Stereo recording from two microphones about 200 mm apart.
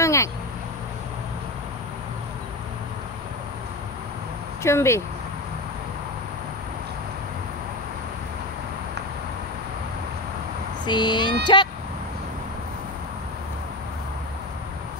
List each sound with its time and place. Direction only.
0.0 s vehicle: 15° left (ahead or behind)
4.6 s speech: 15° left (ahead or behind)
10.9 s a sound: 20° left (ahead or behind)
11.4 s speech: 20° left (ahead or behind)